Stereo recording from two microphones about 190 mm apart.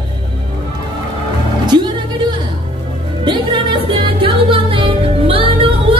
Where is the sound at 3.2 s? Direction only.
25° right (ahead or behind).